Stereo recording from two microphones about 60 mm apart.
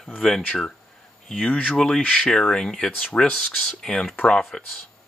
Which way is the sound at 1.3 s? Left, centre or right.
Centre.